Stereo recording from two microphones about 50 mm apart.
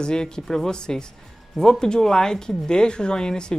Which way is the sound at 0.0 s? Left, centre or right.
Centre.